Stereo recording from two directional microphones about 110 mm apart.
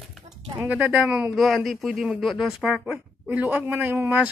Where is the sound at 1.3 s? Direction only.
Centre (ahead or behind).